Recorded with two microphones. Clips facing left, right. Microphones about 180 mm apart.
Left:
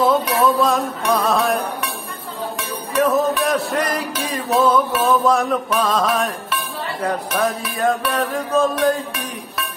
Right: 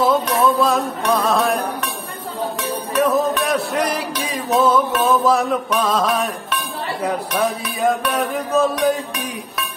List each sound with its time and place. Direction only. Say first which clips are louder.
0.0 s music: even; 5° left (ahead or behind)
3.0 s music: left 1 dB; centre (ahead or behind)